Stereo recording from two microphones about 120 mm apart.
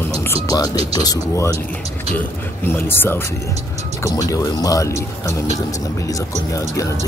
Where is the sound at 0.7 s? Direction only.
55° right (ahead or behind).